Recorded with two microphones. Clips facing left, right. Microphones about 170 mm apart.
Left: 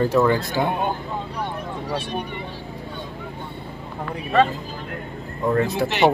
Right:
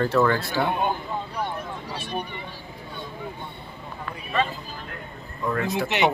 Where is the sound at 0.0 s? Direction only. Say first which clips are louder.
Left 3 dB; 15° left (ahead or behind).